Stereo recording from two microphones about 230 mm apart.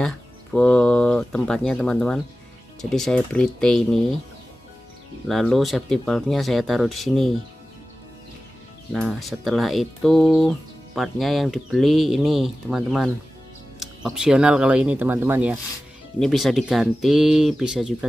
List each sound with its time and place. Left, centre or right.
0.0 s speech: centre
5.3 s speech: centre
8.9 s speech: centre